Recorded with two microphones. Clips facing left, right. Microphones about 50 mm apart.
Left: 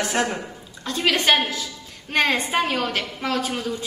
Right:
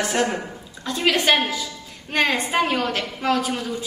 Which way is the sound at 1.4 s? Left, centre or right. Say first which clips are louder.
Right 1 dB; centre.